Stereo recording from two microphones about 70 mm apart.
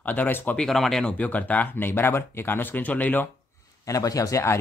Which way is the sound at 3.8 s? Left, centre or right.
Left.